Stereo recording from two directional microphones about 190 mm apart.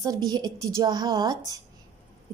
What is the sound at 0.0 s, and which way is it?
A woman's voice, 20° right (ahead or behind).